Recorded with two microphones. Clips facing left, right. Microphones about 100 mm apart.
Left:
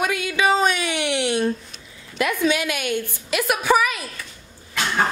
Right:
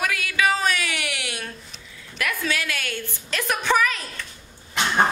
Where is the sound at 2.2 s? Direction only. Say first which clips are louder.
Left 6 dB; 20° left (ahead or behind).